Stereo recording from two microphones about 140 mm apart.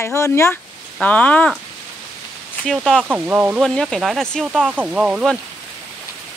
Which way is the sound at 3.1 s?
10° right (ahead or behind).